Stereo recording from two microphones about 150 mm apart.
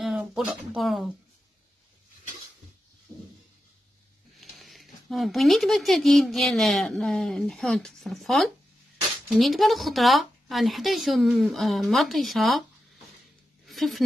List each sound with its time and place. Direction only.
0.0 s speech: 5° right (ahead or behind)
3.1 s a sound: 20° right (ahead or behind)
4.4 s speech: centre (ahead or behind)
13.7 s speech: centre (ahead or behind)